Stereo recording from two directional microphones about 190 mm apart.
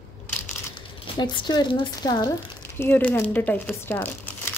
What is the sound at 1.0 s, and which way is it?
Speech, 25° left (ahead or behind).